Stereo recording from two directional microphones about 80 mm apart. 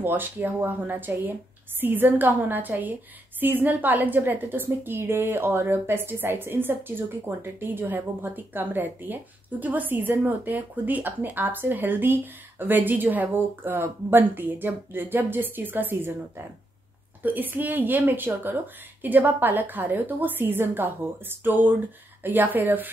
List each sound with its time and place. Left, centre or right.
0.0 s a woman's voice: right